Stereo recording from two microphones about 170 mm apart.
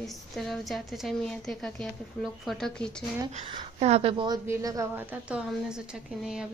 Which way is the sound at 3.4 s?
35° right (ahead or behind).